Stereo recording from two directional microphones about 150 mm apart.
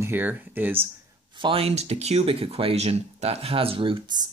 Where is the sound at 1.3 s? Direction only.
35° right (ahead or behind).